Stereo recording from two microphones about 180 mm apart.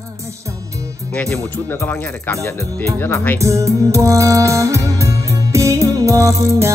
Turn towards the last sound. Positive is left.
turn(degrees=-20)  # may be behind; listen again after turning